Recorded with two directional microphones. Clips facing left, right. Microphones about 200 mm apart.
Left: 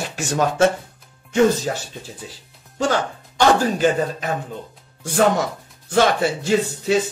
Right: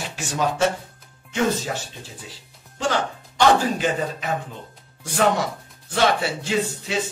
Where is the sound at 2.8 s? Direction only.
45° left (ahead or behind).